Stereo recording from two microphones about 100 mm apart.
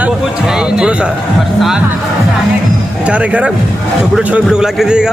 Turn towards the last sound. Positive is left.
turn(degrees=-5)  # may be behind; listen again after turning